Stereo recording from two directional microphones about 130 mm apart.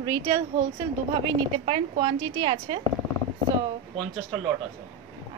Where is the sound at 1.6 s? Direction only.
45° right (ahead or behind).